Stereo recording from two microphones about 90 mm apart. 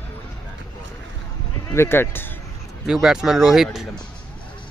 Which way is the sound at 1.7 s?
25° left (ahead or behind).